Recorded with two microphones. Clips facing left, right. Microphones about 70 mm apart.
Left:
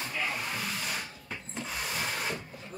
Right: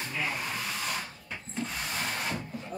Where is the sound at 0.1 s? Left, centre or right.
Centre.